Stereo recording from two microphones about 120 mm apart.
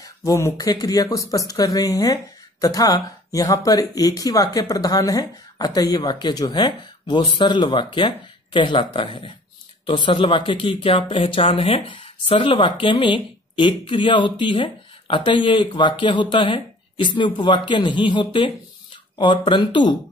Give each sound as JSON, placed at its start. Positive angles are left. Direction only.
{"t": 0.0, "sound": "speech", "side_deg": 30}